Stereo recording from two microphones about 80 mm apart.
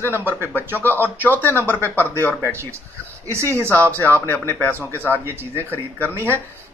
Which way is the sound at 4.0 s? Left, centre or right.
Left.